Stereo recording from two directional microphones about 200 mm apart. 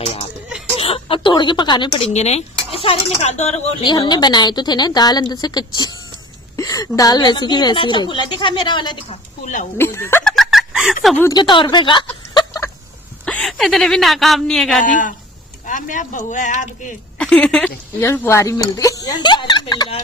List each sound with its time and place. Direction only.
0.0 s a sound: 30° left (ahead or behind)
0.7 s speech: 30° left (ahead or behind)
3.9 s a woman's voice: 20° left (ahead or behind)
9.8 s speech: 10° left (ahead or behind)
10.4 s a sound: centre (ahead or behind)
11.1 s a woman's voice: 20° left (ahead or behind)
12.4 s fowl: 15° left (ahead or behind)
13.2 s speech: 5° left (ahead or behind)
14.9 s speech: 40° left (ahead or behind)
17.2 s speech: 5° left (ahead or behind); by 20.0 s 25° left (ahead or behind)